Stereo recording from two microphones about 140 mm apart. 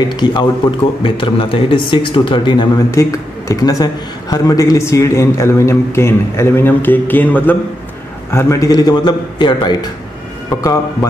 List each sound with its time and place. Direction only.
0.0 s speech: 30° left (ahead or behind)
2.9 s a man's voice: 20° left (ahead or behind)